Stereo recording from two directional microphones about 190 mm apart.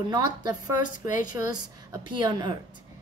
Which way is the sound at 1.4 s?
20° right (ahead or behind).